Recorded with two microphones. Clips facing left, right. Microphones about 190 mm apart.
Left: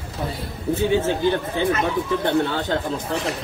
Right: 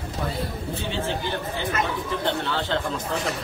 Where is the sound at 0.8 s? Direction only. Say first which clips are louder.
Left 9 dB; 15° left (ahead or behind).